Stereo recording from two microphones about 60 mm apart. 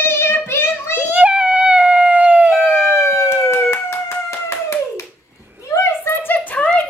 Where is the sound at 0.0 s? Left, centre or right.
Left.